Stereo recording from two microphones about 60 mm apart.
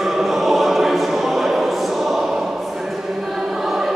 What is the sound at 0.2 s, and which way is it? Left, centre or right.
Choir, centre.